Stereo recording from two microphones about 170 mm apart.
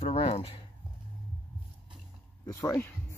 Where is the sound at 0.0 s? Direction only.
35° left (ahead or behind).